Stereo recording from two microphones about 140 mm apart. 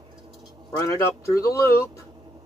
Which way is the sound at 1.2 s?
20° left (ahead or behind).